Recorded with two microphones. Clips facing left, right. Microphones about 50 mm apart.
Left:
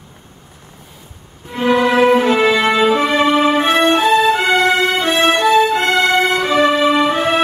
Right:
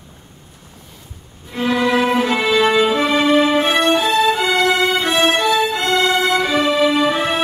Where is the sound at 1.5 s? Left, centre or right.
Centre.